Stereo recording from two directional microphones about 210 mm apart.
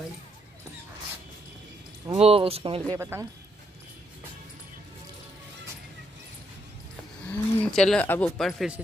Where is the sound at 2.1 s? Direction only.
30° right (ahead or behind).